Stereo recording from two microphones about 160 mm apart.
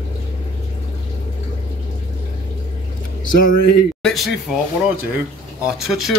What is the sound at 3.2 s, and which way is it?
Speech, 55° left (ahead or behind).